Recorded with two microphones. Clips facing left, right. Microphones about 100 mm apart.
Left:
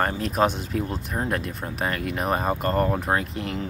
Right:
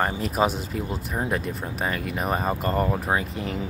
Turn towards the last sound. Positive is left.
turn(degrees=0)  # may be behind; listen again after turning